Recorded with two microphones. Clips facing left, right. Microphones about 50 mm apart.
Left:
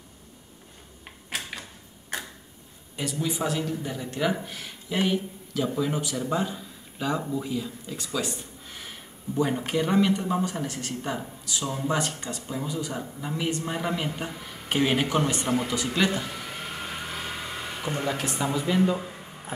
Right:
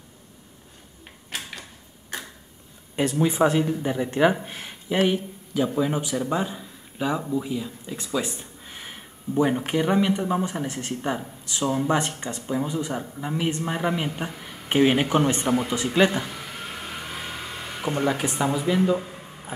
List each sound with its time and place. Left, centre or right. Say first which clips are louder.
3.0 s a man's voice: right 8 dB; right
5.0 s a man's voice: right 1 dB; centre
17.1 s vehicle: even; centre
17.8 s speech: right 5 dB; centre